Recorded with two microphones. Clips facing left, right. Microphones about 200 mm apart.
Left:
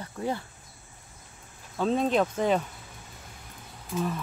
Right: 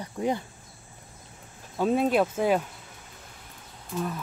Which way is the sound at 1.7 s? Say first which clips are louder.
Right 2 dB; 10° right (ahead or behind).